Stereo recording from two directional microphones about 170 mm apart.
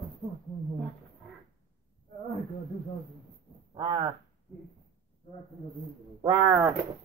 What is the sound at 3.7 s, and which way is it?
Speech, 30° right (ahead or behind).